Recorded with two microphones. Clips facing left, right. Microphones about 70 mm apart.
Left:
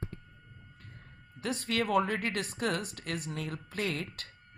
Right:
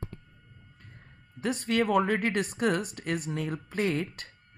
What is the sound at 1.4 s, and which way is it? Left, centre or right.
Speech, right.